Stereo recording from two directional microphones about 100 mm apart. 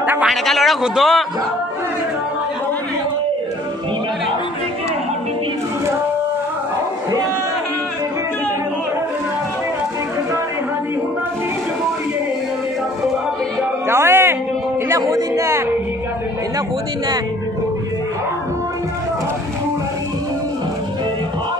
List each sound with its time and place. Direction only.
0.0 s speech: 20° right (ahead or behind)
0.3 s a man's voice: centre (ahead or behind)
13.8 s music: 25° right (ahead or behind)
14.9 s a sound: 35° right (ahead or behind)